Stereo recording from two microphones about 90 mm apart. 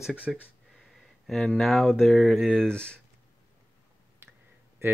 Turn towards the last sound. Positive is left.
turn(degrees=-30)  # may be behind; listen again after turning